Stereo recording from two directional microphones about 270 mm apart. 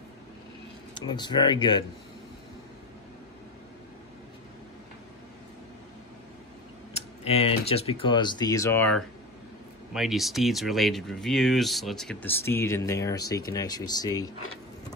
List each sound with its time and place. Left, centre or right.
0.9 s speech: centre
6.9 s speech: left